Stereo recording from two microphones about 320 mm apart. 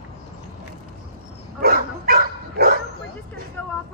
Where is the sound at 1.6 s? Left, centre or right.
Right.